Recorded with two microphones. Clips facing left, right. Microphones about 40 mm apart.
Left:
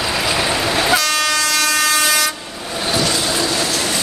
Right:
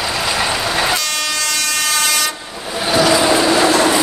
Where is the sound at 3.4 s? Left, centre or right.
Right.